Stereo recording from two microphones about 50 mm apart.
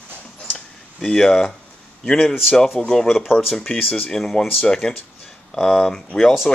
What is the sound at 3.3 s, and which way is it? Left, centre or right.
Speech, centre.